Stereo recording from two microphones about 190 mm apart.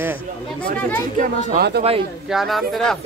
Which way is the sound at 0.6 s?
10° left (ahead or behind).